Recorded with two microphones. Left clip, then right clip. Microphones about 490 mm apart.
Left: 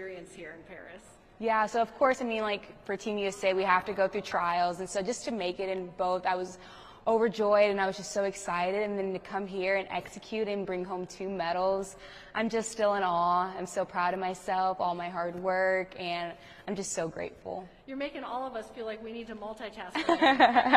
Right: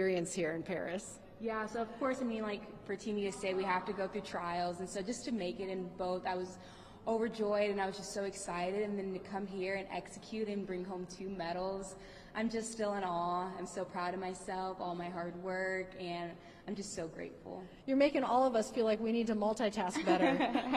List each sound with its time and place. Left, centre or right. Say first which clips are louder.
1.4 s a woman's voice: left 11 dB; left
17.8 s a woman's voice: right 8 dB; right
20.2 s speech: left 11 dB; left